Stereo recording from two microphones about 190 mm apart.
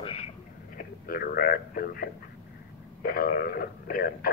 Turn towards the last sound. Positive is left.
turn(degrees=50)  # may be behind; listen again after turning